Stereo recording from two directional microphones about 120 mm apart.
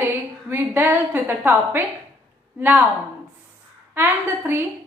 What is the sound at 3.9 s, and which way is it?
Speech, 20° right (ahead or behind).